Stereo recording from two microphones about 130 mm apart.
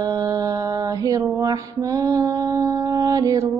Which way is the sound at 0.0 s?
25° right (ahead or behind).